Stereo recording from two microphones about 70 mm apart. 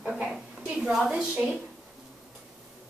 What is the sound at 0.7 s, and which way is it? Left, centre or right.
Speech, centre.